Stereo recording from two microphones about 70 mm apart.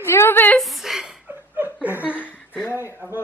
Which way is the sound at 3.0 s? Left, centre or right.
Right.